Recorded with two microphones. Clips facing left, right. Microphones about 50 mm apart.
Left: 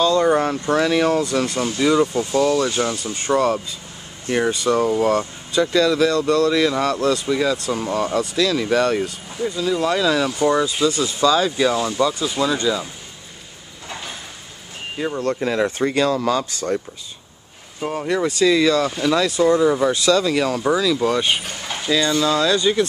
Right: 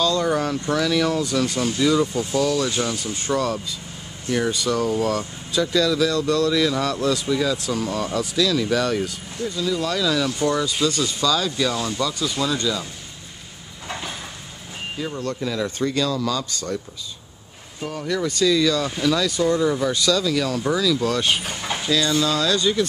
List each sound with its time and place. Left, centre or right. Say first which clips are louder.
0.0 s speech: left 4 dB; left
5.5 s speech: left 3 dB; centre
9.6 s speech: left 4 dB; left
10.4 s speech: left 5 dB; centre
15.0 s speech: left 6 dB; left
17.8 s speech: left 4 dB; left
19.5 s speech: left 5 dB; centre
20.1 s speech: left 3 dB; left
20.6 s speech: left 2 dB; centre
21.5 s speech: right 2 dB; centre
21.8 s speech: left 3 dB; centre